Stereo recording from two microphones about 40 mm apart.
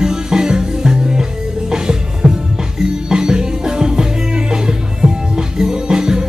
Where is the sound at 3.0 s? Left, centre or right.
Centre.